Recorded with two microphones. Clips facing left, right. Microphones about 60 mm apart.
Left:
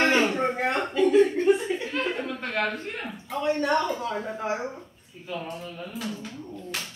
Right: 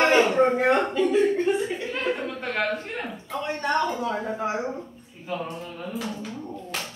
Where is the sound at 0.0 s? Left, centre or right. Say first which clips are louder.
Right 3 dB; centre.